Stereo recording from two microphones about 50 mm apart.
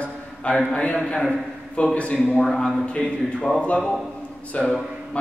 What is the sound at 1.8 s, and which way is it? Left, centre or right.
A man's voice, left.